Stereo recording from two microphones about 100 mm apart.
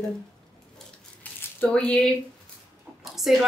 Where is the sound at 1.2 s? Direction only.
20° left (ahead or behind).